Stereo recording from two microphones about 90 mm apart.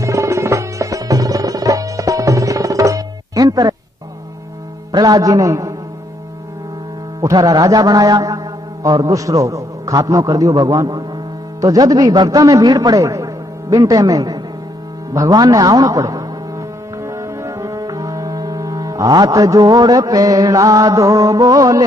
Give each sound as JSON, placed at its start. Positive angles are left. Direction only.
{"t": 0.0, "sound": "music", "side_deg": -35}
{"t": 4.9, "sound": "a man's voice", "side_deg": -45}
{"t": 7.2, "sound": "a man's voice", "side_deg": -40}
{"t": 17.0, "sound": "foghorn", "side_deg": -35}